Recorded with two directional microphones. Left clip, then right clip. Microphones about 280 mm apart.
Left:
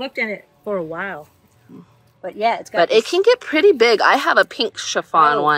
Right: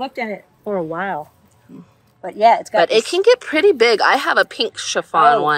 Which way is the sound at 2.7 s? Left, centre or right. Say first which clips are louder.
Right 1 dB; centre.